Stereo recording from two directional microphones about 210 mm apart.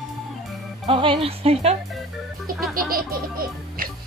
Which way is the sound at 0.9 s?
25° right (ahead or behind).